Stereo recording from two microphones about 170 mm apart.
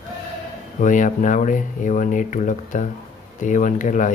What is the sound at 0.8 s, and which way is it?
Speech, 50° left (ahead or behind).